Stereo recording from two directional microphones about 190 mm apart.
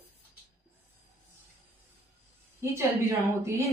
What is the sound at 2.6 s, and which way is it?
Speech, 15° right (ahead or behind).